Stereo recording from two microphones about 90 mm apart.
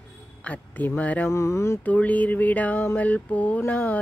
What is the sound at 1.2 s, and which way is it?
Mantra, 30° left (ahead or behind).